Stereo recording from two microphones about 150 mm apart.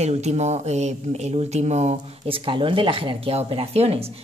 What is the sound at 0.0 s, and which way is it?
Speech, 50° right (ahead or behind).